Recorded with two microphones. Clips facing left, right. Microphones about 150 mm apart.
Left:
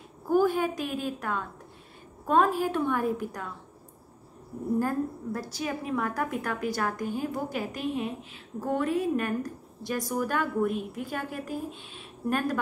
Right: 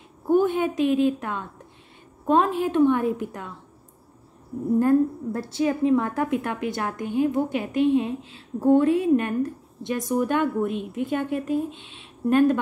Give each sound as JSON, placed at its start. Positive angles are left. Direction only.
{"t": 0.3, "sound": "a woman's voice", "side_deg": -20}
{"t": 4.7, "sound": "a woman's voice", "side_deg": -25}